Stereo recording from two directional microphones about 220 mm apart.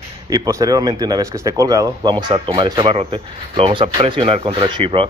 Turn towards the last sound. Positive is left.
turn(degrees=-20)  # may be behind; listen again after turning